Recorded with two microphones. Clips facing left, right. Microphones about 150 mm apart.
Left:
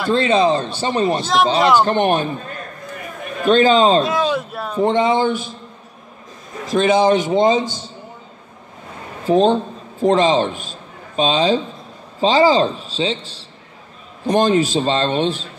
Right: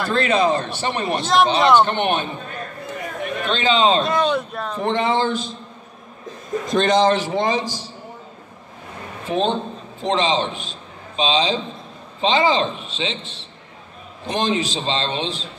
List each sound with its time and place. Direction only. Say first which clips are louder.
0.1 s a man's voice: left 4 dB; 25° left (ahead or behind)
1.1 s speech: left 1 dB; centre (ahead or behind)
1.9 s a man's voice: left 5 dB; 40° left (ahead or behind)
3.4 s a man's voice: left 6 dB; 45° left (ahead or behind)
4.0 s speech: left 1 dB; centre (ahead or behind)
4.7 s speech: left 5 dB; 20° left (ahead or behind)
6.6 s a man's voice: left 2 dB; 5° left (ahead or behind); by 7.9 s 25° left (ahead or behind)
9.2 s a man's voice: left 7 dB; 40° left (ahead or behind)